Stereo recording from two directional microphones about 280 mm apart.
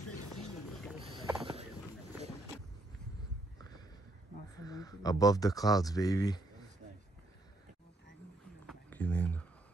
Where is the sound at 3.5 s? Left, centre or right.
Centre.